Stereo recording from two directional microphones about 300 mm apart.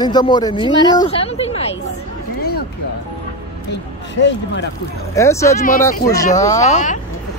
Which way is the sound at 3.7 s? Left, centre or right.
Left.